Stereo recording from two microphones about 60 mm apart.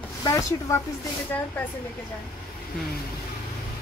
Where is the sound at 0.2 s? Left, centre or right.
Left.